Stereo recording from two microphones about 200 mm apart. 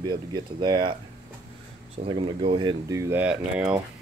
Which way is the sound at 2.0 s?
25° right (ahead or behind).